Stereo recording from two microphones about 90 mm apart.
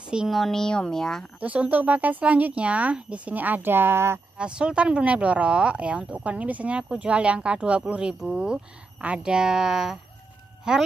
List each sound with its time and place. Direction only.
0.1 s speech: 10° right (ahead or behind)
0.4 s speech: 5° left (ahead or behind)
1.4 s speech: 15° right (ahead or behind)
4.4 s speech: 10° right (ahead or behind)